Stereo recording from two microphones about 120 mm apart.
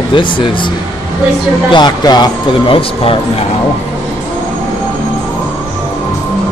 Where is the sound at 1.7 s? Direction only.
35° left (ahead or behind).